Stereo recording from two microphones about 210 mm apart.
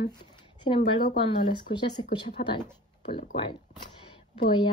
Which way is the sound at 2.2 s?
25° left (ahead or behind).